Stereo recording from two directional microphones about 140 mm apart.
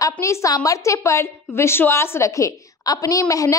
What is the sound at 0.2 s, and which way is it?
A woman's voice, 20° left (ahead or behind).